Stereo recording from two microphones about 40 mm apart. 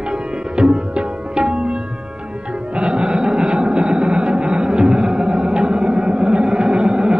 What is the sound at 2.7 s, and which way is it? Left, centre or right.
Music, right.